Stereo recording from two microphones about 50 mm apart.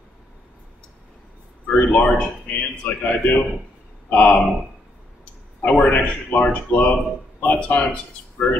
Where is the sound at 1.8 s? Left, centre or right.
Left.